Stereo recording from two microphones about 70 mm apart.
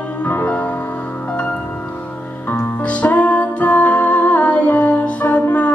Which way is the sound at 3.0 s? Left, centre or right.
Centre.